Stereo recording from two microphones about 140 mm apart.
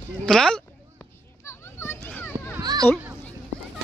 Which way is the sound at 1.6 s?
15° left (ahead or behind).